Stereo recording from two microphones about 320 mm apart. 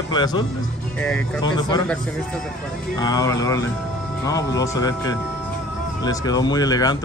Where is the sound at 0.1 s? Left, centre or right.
Centre.